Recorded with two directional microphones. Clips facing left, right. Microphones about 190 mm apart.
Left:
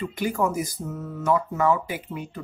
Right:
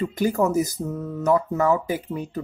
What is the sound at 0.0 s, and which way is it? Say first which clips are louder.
Speech: right 4 dB; 40° right (ahead or behind).